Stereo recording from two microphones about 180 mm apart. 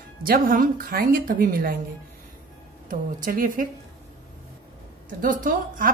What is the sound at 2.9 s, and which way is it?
Speech, 50° right (ahead or behind).